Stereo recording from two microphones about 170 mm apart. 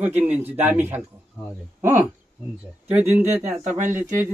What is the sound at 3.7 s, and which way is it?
Speech, 45° right (ahead or behind).